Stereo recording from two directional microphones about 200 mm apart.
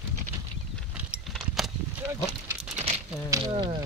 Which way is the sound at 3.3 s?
25° right (ahead or behind).